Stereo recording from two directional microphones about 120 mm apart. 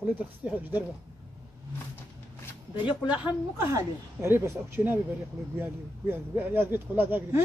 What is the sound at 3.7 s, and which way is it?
Speech, 20° right (ahead or behind).